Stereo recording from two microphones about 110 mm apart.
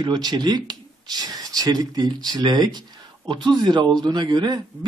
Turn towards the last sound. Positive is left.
turn(degrees=-40)  # may be behind; listen again after turning